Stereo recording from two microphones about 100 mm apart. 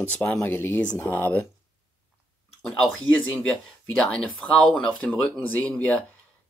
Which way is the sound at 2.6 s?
5° left (ahead or behind).